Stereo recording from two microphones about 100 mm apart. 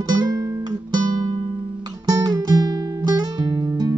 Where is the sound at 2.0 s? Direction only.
40° right (ahead or behind).